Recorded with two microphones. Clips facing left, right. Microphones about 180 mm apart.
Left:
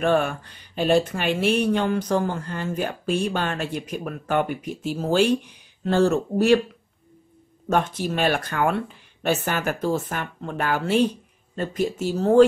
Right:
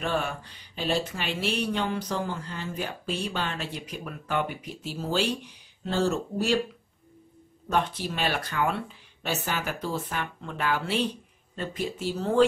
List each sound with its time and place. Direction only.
0.0 s speech: 55° left (ahead or behind)
7.7 s speech: 45° left (ahead or behind)